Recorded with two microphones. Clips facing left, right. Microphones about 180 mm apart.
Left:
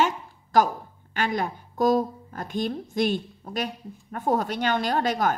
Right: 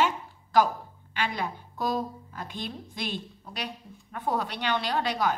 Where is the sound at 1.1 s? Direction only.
45° left (ahead or behind).